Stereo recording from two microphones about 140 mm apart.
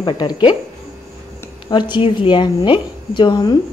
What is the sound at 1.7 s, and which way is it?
A woman's voice, 35° left (ahead or behind).